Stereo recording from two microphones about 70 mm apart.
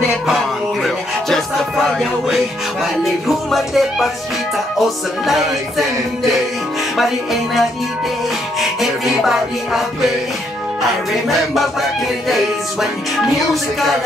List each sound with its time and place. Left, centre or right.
1.9 s music: centre
8.5 s music: centre
11.2 s music: centre